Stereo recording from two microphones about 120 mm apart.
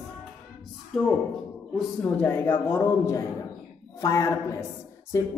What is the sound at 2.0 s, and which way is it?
A man's voice, 10° left (ahead or behind).